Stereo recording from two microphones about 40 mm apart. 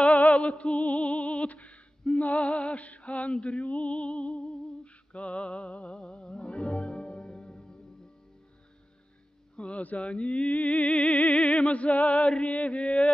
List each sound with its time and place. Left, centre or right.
0.0 s music: left
5.9 s music: left
9.6 s music: left